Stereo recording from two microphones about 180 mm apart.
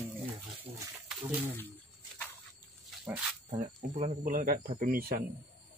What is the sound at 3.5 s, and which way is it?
Speech, 35° right (ahead or behind).